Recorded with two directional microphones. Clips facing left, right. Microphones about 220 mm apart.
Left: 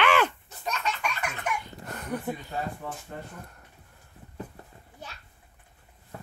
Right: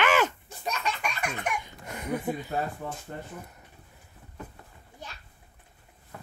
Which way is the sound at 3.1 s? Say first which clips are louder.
Right 1 dB; 35° right (ahead or behind).